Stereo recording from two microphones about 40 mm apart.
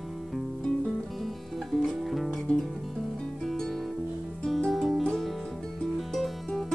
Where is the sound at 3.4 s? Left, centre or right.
Centre.